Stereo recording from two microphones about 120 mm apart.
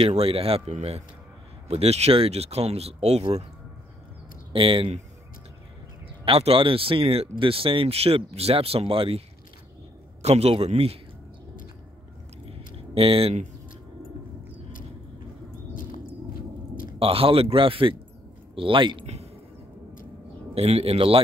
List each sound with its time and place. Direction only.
0.0 s speech: 50° right (ahead or behind)
4.5 s speech: 50° right (ahead or behind)
6.2 s speech: 50° right (ahead or behind)
10.2 s speech: 60° right (ahead or behind)
12.4 s a sound: 50° right (ahead or behind)
17.0 s speech: 50° right (ahead or behind)
20.5 s speech: 60° right (ahead or behind)